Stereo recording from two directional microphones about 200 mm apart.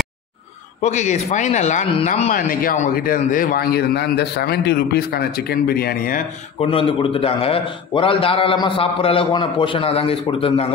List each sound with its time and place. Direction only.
0.8 s a man's voice: 35° left (ahead or behind)
6.6 s a man's voice: 25° left (ahead or behind)